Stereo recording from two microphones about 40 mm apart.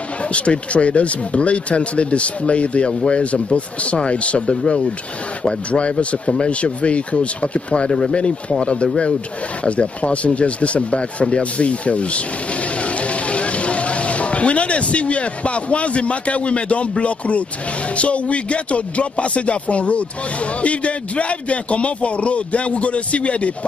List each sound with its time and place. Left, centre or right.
0.3 s speech: left